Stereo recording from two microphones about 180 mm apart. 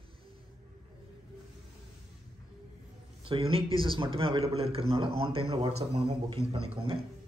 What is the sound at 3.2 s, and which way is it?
A man's voice, 30° right (ahead or behind).